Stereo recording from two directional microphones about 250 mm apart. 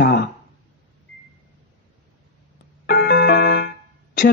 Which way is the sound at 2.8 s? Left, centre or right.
Left.